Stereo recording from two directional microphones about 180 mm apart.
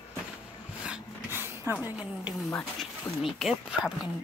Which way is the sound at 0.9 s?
10° right (ahead or behind).